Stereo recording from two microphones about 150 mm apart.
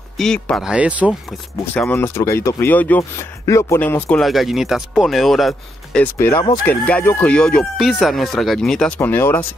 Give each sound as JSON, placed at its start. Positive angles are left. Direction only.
{"t": 0.2, "sound": "speech", "side_deg": 5}
{"t": 1.7, "sound": "speech", "side_deg": 10}
{"t": 4.2, "sound": "speech", "side_deg": 0}
{"t": 6.1, "sound": "speech", "side_deg": 20}